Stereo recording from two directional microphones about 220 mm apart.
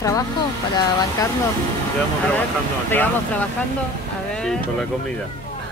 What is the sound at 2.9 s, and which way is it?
Speech, 10° left (ahead or behind).